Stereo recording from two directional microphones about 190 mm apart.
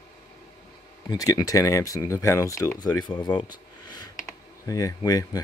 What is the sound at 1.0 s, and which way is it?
Speech, 20° left (ahead or behind).